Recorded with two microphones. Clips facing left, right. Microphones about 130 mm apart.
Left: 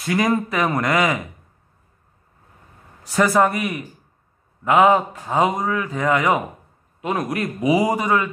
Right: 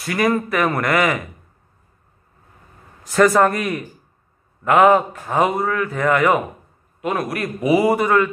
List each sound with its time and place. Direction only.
0.0 s speech: 20° left (ahead or behind)
3.0 s a man's voice: 10° left (ahead or behind)